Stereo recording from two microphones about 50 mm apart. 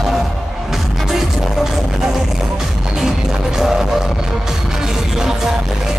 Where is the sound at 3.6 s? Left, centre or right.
Centre.